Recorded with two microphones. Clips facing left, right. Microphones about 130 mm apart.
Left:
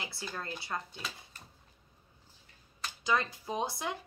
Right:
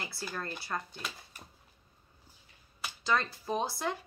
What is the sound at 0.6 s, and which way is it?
Speech, 20° left (ahead or behind).